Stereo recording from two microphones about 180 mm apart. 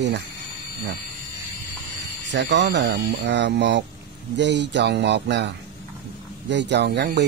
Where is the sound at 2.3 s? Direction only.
75° right (ahead or behind).